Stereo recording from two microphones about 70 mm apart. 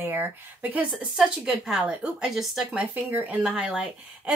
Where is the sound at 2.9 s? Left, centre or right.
Right.